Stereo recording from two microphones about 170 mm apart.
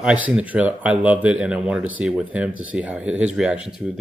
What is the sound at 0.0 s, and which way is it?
Speech, 5° right (ahead or behind).